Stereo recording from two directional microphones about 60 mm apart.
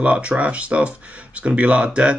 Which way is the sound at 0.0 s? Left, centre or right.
Right.